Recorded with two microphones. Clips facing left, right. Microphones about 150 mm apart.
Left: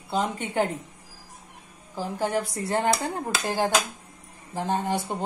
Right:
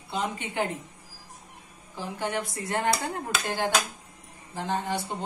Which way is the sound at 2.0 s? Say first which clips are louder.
Left 4 dB; 35° left (ahead or behind).